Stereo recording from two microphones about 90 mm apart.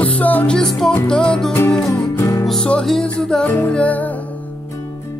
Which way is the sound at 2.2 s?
40° left (ahead or behind).